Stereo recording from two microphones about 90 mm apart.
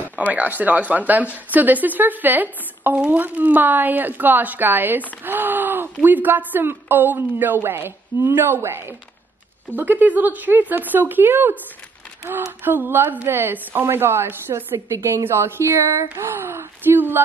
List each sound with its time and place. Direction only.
0.3 s a woman's voice: 20° right (ahead or behind)
5.2 s gasp: 20° right (ahead or behind)
6.0 s a woman's voice: 20° right (ahead or behind)
12.6 s a woman's voice: 25° right (ahead or behind)